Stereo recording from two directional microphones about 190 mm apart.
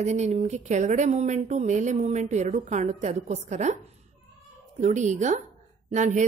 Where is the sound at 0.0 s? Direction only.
35° right (ahead or behind).